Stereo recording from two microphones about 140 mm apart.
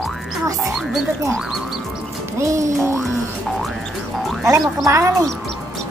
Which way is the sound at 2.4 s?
20° right (ahead or behind).